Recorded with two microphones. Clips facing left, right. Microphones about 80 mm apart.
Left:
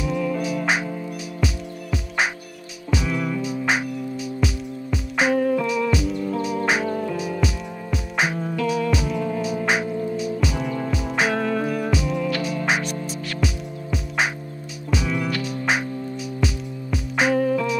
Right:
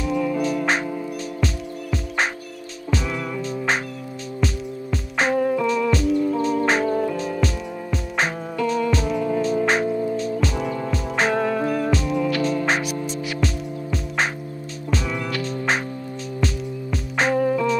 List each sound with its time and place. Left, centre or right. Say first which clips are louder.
0.0 s music: right 2 dB; centre
5.4 s music: even; centre
5.7 s music: right 2 dB; centre
9.7 s music: right 2 dB; centre
11.3 s music: right 2 dB; centre
11.8 s music: right 2 dB; centre
17.4 s music: right 1 dB; centre